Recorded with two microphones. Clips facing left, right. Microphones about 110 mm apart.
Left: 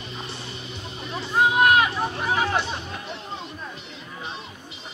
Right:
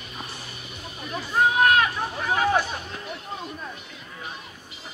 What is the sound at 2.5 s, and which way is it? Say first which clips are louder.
Speech: right 2 dB; 25° left (ahead or behind).